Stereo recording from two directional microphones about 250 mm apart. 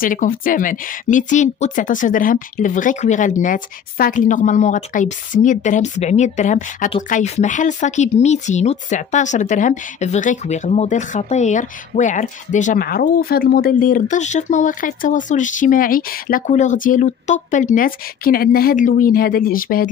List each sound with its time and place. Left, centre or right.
0.0 s speech: left